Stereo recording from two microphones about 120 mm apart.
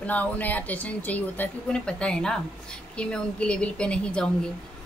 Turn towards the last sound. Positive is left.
turn(degrees=10)  # may be behind; listen again after turning